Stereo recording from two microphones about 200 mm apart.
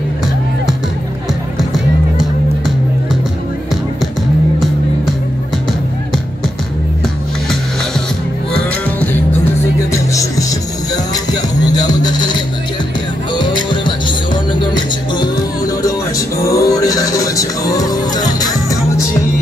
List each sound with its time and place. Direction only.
9.8 s music: 15° left (ahead or behind)
11.5 s music: 20° left (ahead or behind)